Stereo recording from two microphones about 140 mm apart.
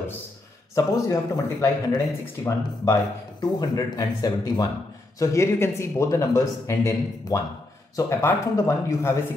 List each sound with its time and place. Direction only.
0.7 s speech: 20° left (ahead or behind)